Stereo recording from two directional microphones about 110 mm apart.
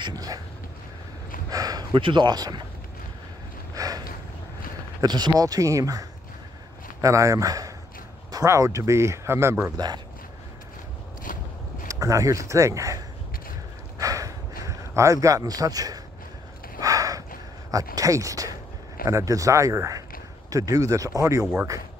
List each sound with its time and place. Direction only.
0.0 s speech: 35° right (ahead or behind)
1.5 s speech: 35° right (ahead or behind)
3.7 s a sound: 35° right (ahead or behind)
5.0 s speech: 40° right (ahead or behind); by 9.6 s 25° right (ahead or behind)
9.8 s speech: 35° right (ahead or behind)
11.9 s speech: 30° right (ahead or behind)
13.9 s a sound: 30° right (ahead or behind)
17.6 s speech: 30° right (ahead or behind)